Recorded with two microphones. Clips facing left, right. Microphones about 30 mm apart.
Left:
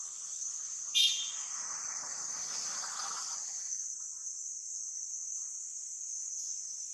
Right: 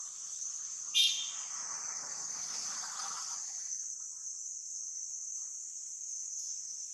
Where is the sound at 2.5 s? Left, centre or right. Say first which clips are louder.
Left 2 dB; centre.